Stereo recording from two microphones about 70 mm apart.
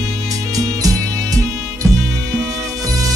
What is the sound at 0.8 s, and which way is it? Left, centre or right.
Music, right.